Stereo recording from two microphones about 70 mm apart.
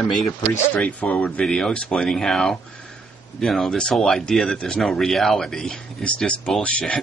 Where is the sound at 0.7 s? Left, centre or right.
Left.